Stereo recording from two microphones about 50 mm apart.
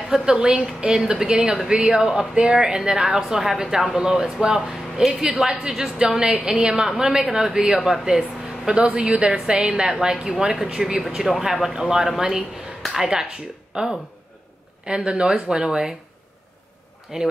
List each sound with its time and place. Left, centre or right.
0.1 s a woman's voice: centre
17.1 s a woman's voice: centre